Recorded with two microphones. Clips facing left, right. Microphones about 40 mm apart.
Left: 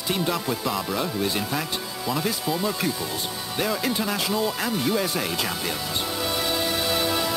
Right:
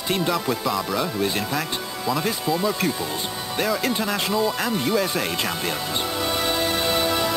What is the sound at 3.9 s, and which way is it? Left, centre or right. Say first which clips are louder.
Speech: right 2 dB; centre.